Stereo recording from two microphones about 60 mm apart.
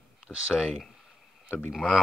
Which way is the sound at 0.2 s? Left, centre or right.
Right.